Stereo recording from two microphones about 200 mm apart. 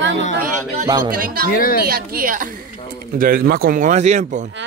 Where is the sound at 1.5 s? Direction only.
45° left (ahead or behind).